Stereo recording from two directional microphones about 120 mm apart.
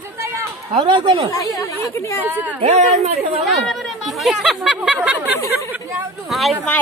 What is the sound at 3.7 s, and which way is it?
Speech, centre (ahead or behind).